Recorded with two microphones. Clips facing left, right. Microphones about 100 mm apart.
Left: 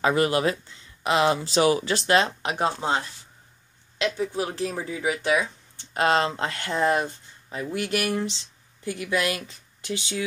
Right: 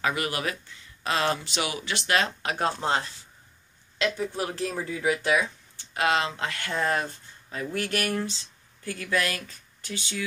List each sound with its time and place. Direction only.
0.0 s speech: 30° left (ahead or behind)
1.4 s speech: 35° left (ahead or behind)
4.0 s speech: 20° left (ahead or behind)